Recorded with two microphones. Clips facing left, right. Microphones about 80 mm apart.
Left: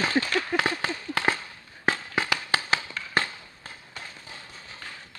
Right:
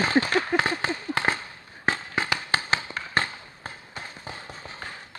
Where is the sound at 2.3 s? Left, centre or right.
Centre.